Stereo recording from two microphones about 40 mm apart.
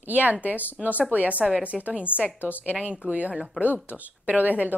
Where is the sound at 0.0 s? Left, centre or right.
Right.